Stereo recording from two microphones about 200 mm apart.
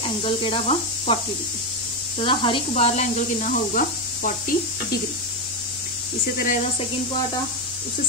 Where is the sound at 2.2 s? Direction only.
25° left (ahead or behind); by 4.3 s 40° left (ahead or behind).